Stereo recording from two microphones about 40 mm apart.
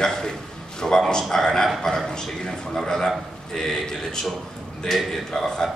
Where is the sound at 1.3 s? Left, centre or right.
Centre.